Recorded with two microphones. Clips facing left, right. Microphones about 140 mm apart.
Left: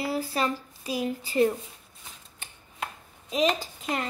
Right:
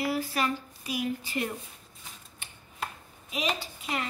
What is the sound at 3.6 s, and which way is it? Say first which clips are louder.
Speech: left 3 dB; 40° left (ahead or behind).